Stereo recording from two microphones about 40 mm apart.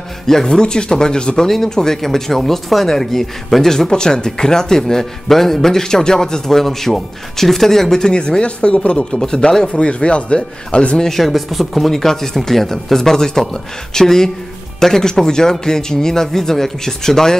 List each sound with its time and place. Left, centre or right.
0.5 s speech: centre
8.1 s speech: left
9.7 s speech: left
11.0 s speech: centre